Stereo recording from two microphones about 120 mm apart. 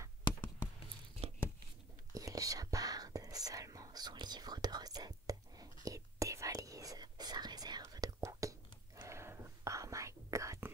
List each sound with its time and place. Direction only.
1.2 s tearing: 55° right (ahead or behind)
2.1 s whispering: 30° right (ahead or behind)